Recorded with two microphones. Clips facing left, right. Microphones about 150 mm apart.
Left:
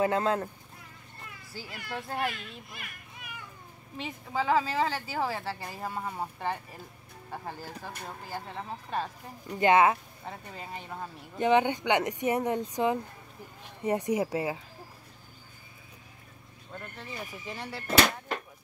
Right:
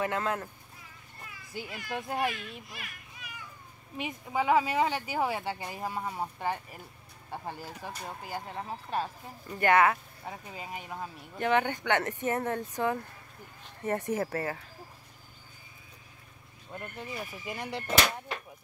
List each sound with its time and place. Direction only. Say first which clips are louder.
0.0 s speech: left 5 dB; 30° left (ahead or behind)
1.5 s a child's voice: right 2 dB; 15° right (ahead or behind)
2.7 s children playing: even; 50° left (ahead or behind)
4.0 s speech: right 1 dB; 15° right (ahead or behind)
9.5 s speech: left 2 dB; 20° left (ahead or behind)
10.2 s speech: right 1 dB; 5° right (ahead or behind)
11.3 s speech: left 3 dB; 20° left (ahead or behind)
16.7 s speech: right 2 dB; 15° right (ahead or behind)